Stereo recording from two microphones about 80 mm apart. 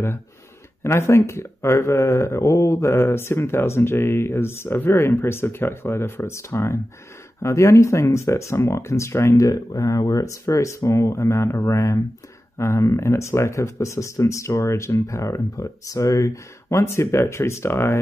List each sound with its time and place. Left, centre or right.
0.8 s speech: left